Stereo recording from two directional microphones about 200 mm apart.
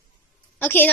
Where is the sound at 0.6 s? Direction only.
10° left (ahead or behind).